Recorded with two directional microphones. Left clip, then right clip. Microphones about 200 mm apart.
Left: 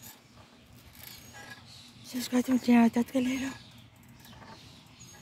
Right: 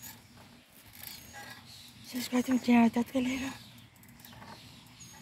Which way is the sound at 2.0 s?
20° left (ahead or behind).